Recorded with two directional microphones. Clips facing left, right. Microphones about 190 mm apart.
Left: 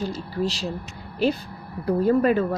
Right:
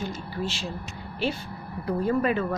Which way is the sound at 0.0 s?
35° left (ahead or behind).